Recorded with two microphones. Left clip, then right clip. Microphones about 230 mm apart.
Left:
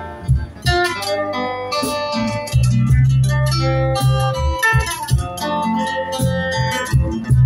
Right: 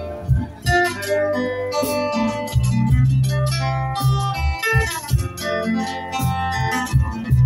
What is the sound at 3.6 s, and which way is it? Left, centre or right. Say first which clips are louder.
Music: left 5 dB; left.